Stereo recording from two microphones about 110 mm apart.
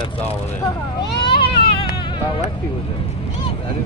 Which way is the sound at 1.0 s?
45° left (ahead or behind).